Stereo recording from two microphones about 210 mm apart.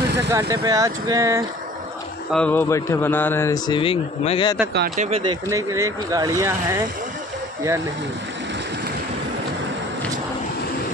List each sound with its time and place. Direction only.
0.3 s speech: 15° right (ahead or behind)
2.3 s a man's voice: 5° left (ahead or behind); by 4.6 s 25° left (ahead or behind)
4.9 s speech: 35° right (ahead or behind)
5.2 s speech: 20° right (ahead or behind)